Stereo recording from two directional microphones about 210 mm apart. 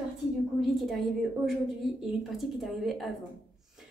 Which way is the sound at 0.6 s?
Centre (ahead or behind).